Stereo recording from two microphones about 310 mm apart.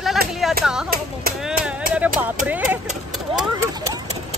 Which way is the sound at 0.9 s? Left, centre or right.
Right.